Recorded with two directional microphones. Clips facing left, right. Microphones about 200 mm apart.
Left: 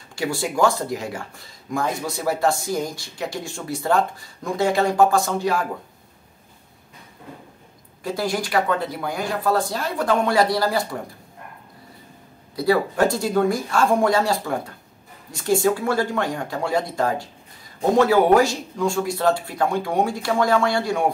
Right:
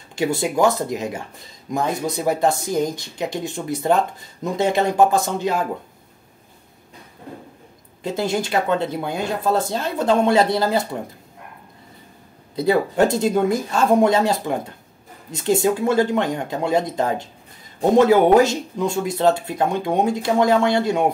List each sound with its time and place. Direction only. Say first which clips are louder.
0.1 s speech: right 4 dB; 20° right (ahead or behind)
8.0 s speech: right 2 dB; 25° right (ahead or behind)
12.5 s speech: right 2 dB; 20° right (ahead or behind)